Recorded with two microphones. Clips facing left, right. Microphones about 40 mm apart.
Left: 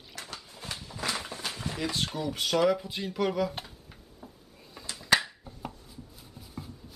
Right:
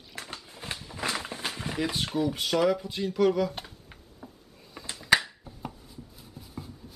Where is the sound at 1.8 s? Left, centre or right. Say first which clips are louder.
Right 4 dB; centre.